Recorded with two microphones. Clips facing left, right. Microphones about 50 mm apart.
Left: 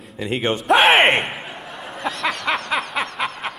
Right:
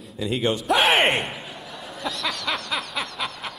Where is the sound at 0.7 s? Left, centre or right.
Left.